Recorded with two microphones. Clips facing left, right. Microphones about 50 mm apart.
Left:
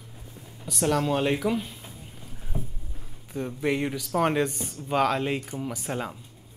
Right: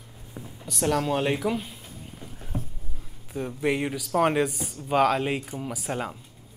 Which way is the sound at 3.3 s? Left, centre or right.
Centre.